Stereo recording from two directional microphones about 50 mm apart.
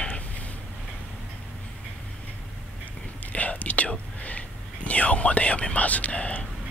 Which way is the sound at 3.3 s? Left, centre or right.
Left.